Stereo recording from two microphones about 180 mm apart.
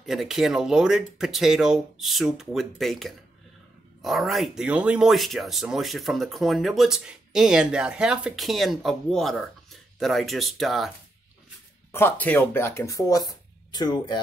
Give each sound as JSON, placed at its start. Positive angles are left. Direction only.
{"t": 0.0, "sound": "speech", "side_deg": 0}
{"t": 11.9, "sound": "speech", "side_deg": 10}